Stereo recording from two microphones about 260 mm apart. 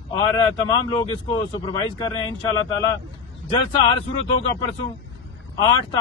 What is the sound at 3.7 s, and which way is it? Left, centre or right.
Speech, centre.